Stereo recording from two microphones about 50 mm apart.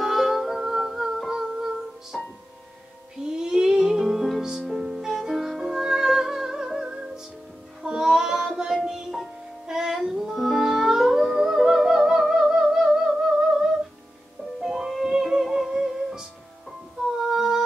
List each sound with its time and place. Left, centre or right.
0.0 s music: centre
2.1 s music: centre
3.2 s music: centre